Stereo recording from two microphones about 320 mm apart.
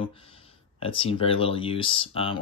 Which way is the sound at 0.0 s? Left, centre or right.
Centre.